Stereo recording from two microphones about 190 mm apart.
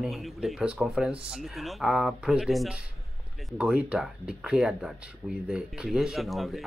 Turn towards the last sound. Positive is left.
turn(degrees=0)  # may be behind; listen again after turning